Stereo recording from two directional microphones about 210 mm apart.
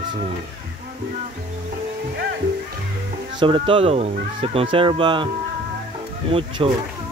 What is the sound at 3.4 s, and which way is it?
Speech, 25° right (ahead or behind).